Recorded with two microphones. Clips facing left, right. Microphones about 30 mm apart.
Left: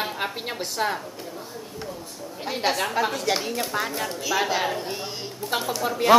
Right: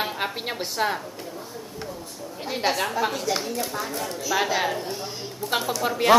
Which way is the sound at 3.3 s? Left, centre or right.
Left.